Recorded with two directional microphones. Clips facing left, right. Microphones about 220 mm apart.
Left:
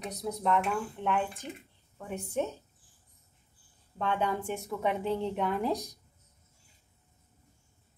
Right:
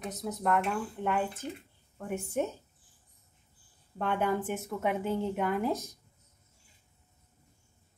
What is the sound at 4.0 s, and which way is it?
A woman's voice, 10° right (ahead or behind).